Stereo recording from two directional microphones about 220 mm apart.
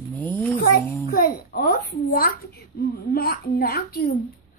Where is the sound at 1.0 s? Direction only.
40° left (ahead or behind).